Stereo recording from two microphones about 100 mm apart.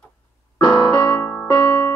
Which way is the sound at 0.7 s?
20° left (ahead or behind).